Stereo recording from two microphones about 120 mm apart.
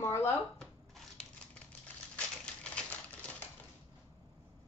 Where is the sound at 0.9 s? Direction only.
5° left (ahead or behind).